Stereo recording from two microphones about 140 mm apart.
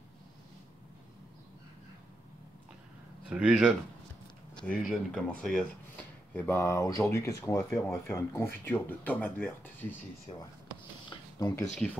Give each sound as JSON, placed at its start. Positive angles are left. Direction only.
{"t": 3.3, "sound": "speech", "side_deg": -5}
{"t": 4.6, "sound": "speech", "side_deg": 5}
{"t": 6.3, "sound": "speech", "side_deg": 15}
{"t": 10.3, "sound": "speech", "side_deg": 35}
{"t": 11.1, "sound": "a sound", "side_deg": 25}